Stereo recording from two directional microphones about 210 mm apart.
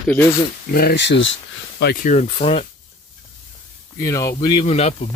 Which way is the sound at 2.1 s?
30° left (ahead or behind).